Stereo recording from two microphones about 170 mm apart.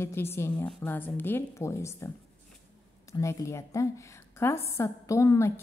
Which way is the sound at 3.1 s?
15° left (ahead or behind).